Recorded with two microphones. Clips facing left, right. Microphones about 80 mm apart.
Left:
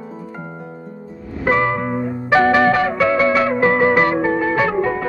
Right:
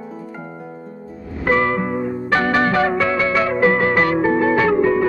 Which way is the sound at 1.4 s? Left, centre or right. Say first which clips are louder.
Even; centre.